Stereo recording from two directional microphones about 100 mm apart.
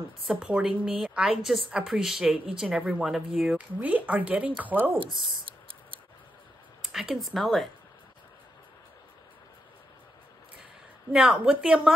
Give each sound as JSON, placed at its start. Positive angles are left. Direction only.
{"t": 0.3, "sound": "speech", "side_deg": -10}
{"t": 3.5, "sound": "speech", "side_deg": -15}
{"t": 4.9, "sound": "a sound", "side_deg": -55}
{"t": 6.8, "sound": "speech", "side_deg": -5}
{"t": 11.1, "sound": "speech", "side_deg": -10}